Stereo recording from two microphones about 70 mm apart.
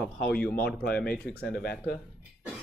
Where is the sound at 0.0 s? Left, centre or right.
Centre.